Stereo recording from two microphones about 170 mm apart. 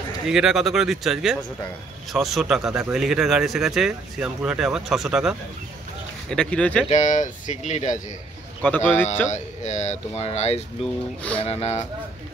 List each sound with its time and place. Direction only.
0.3 s speech: 5° right (ahead or behind)
6.3 s speech: 5° left (ahead or behind)
6.9 s speech: 45° left (ahead or behind)
8.6 s speech: 15° left (ahead or behind)
9.3 s speech: 45° left (ahead or behind)